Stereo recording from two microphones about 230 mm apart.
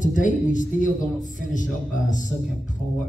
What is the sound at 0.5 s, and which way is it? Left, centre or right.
Speech, left.